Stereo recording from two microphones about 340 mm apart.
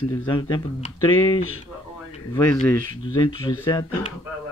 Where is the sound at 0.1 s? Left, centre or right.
Centre.